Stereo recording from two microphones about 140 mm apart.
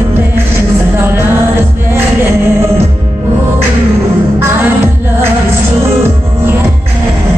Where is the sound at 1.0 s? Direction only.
15° right (ahead or behind).